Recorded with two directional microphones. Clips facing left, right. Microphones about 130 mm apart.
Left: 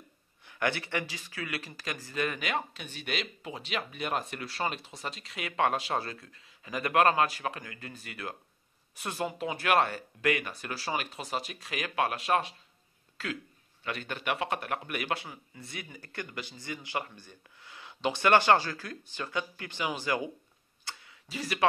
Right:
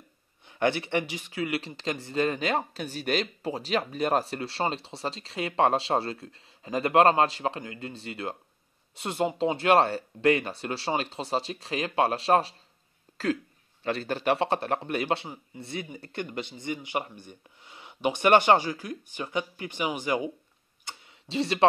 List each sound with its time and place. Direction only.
0.5 s speech: 20° right (ahead or behind)
20.8 s tick-tock: 20° right (ahead or behind)